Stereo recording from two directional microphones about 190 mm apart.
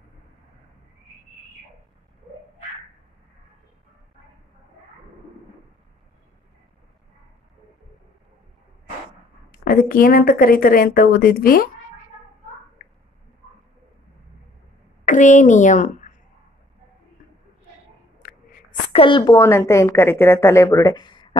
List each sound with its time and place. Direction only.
9.5 s speech: 50° left (ahead or behind)
15.0 s speech: 40° left (ahead or behind)
18.2 s a sound: 45° left (ahead or behind)
18.9 s a woman's voice: 30° left (ahead or behind)